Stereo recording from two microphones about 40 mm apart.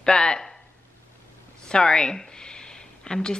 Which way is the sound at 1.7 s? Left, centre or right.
Centre.